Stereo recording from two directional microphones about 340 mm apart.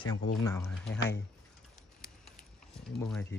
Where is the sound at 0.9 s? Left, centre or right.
Left.